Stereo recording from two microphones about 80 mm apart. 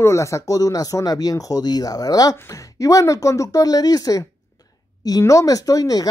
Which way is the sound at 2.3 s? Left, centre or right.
Left.